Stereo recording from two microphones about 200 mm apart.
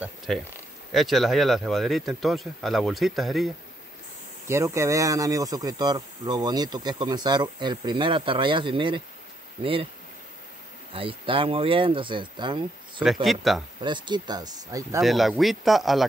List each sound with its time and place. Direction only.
0.3 s speech: centre (ahead or behind)
4.5 s speech: 15° right (ahead or behind)
10.9 s speech: 25° right (ahead or behind)
13.0 s speech: centre (ahead or behind)
13.7 s speech: 25° right (ahead or behind)
15.0 s speech: centre (ahead or behind)